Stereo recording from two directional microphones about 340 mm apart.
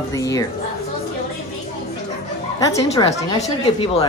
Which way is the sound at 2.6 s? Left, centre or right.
Centre.